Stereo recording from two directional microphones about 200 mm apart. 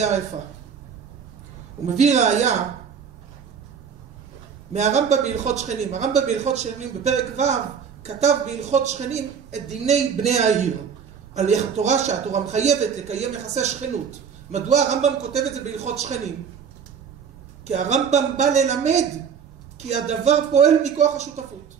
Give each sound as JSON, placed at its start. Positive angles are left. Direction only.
{"t": 2.0, "sound": "speech", "side_deg": -35}
{"t": 4.7, "sound": "speech", "side_deg": -35}
{"t": 17.6, "sound": "speech", "side_deg": -35}